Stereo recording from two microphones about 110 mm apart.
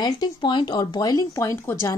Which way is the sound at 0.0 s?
40° left (ahead or behind).